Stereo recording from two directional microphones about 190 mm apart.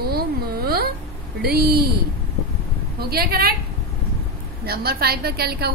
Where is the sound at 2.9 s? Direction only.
55° right (ahead or behind).